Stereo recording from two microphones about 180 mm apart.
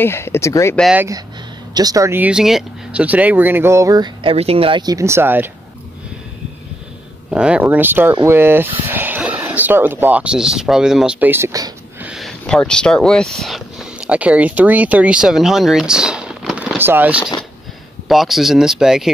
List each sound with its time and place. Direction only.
0.0 s speech: 15° left (ahead or behind)
0.9 s speech: 15° right (ahead or behind)
7.2 s speech: 5° right (ahead or behind)
12.0 s speech: centre (ahead or behind)